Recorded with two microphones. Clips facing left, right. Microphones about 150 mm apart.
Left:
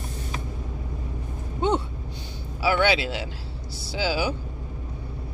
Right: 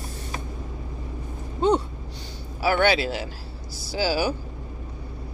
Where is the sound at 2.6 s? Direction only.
45° right (ahead or behind).